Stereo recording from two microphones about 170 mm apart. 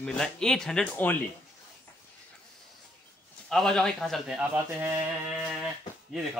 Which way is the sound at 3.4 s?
Centre (ahead or behind).